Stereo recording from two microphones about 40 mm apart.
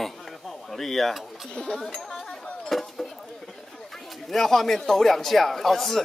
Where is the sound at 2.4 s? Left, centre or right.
Left.